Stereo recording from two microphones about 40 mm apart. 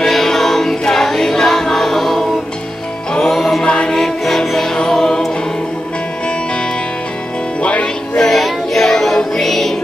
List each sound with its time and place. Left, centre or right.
0.0 s choir: centre
3.3 s music: centre
3.6 s music: left
7.6 s music: left
8.3 s child singing: centre
9.4 s music: centre